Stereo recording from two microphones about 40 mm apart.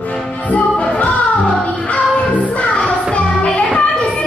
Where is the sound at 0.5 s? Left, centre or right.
Left.